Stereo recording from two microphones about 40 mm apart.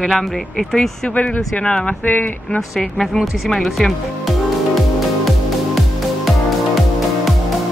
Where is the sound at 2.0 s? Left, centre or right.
Left.